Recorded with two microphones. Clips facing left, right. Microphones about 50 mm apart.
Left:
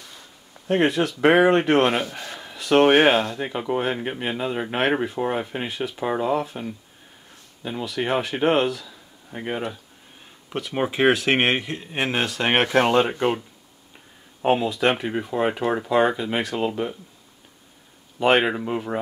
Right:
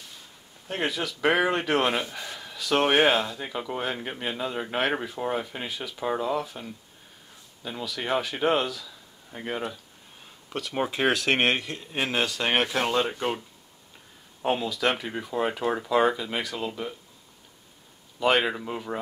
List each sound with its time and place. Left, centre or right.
0.7 s speech: left
2.3 s a sound: left
3.3 s speech: left
7.8 s speech: centre
14.4 s speech: left
18.2 s speech: left